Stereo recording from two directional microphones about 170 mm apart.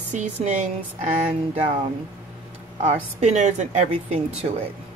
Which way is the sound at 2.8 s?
45° right (ahead or behind).